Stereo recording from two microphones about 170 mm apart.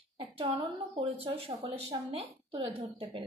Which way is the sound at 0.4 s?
35° right (ahead or behind).